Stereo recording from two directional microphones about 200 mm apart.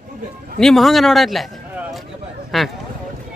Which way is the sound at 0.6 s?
Centre (ahead or behind).